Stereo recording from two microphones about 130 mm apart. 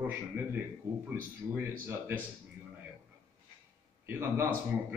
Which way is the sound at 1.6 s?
15° right (ahead or behind).